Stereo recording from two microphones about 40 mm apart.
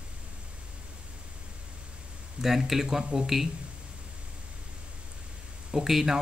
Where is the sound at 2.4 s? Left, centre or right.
Centre.